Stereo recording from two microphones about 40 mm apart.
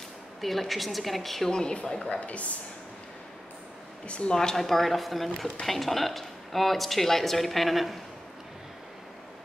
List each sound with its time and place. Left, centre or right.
0.4 s speech: centre
1.5 s a woman's voice: left
2.0 s speech: left
4.1 s a woman's voice: left
4.4 s speech: centre